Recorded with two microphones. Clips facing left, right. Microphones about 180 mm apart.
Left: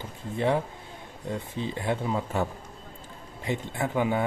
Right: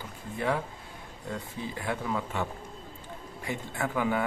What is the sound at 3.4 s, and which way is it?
Speech, 20° left (ahead or behind).